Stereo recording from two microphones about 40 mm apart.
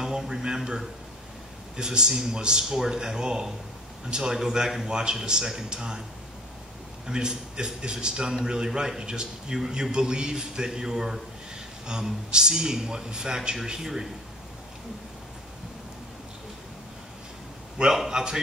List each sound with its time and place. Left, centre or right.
0.0 s a man's voice: centre
7.1 s a man's voice: centre
17.9 s a man's voice: centre